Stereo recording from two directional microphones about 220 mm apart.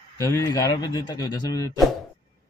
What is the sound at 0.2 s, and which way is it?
A man's voice, 15° left (ahead or behind).